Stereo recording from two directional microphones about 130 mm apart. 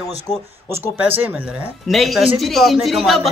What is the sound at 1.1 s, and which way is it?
Speech, 15° right (ahead or behind).